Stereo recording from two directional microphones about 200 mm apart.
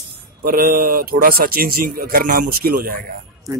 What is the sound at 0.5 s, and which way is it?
Speech, 45° right (ahead or behind).